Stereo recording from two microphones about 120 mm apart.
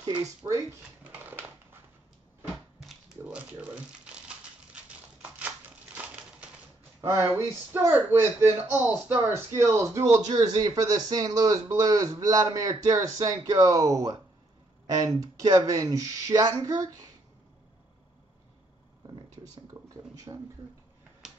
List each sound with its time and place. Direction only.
0.5 s speech: 25° right (ahead or behind)
2.5 s crumpling: 5° right (ahead or behind)
5.9 s a sound: 10° right (ahead or behind)
7.1 s speech: 20° right (ahead or behind)
19.7 s a sound: 25° right (ahead or behind)
21.2 s finger snapping: 5° right (ahead or behind)